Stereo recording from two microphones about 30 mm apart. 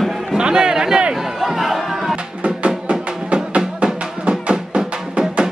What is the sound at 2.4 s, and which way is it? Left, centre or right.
Music, right.